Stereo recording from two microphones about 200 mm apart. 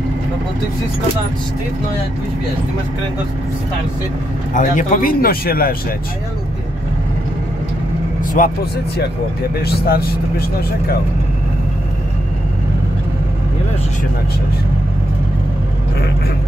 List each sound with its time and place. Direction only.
4.6 s speech: 40° left (ahead or behind)
8.4 s speech: 40° left (ahead or behind)
9.6 s speech: 50° left (ahead or behind)